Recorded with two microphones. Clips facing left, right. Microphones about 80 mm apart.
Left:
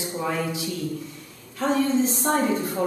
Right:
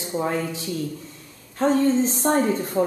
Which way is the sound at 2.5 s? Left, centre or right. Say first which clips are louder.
Right 1 dB; left.